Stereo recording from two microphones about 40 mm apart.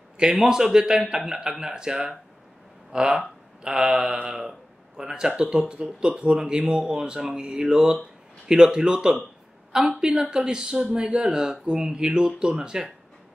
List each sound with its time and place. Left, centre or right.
0.2 s speech: right
4.4 s speech: centre